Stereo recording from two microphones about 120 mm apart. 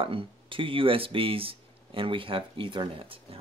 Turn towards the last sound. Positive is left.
turn(degrees=-50)  # may be behind; listen again after turning